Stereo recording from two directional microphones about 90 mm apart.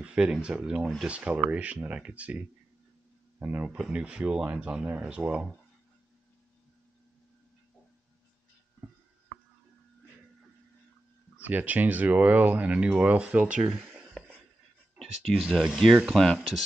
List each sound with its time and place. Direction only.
0.0 s speech: 10° right (ahead or behind)
11.3 s speech: 20° right (ahead or behind)
14.2 s a sound: 10° left (ahead or behind)
15.0 s speech: centre (ahead or behind)